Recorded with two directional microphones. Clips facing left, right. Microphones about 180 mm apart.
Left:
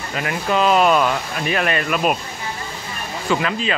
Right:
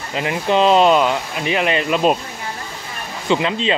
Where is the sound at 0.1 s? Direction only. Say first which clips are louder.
Right 3 dB; 20° right (ahead or behind).